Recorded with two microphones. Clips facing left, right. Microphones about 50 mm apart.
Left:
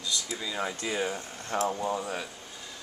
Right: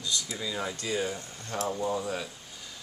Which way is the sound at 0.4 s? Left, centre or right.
Centre.